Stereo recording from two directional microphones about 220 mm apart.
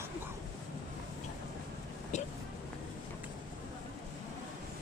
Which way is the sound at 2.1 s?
35° left (ahead or behind).